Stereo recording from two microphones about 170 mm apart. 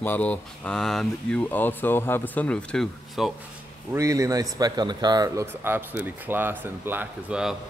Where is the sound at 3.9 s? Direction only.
20° right (ahead or behind).